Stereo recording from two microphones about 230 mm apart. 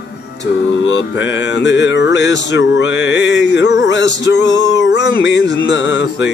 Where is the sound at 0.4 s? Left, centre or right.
Left.